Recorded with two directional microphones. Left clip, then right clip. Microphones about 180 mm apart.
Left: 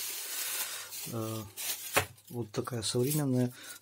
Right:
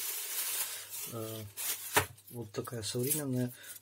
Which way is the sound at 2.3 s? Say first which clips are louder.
Left 4 dB; 35° left (ahead or behind).